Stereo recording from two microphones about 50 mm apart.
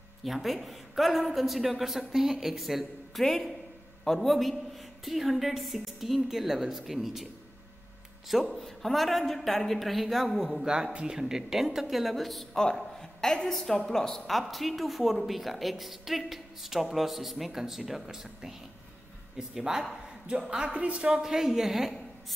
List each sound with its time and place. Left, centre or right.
0.2 s a woman's voice: centre
8.5 s a woman's voice: centre
10.6 s a woman's voice: centre
21.1 s speech: centre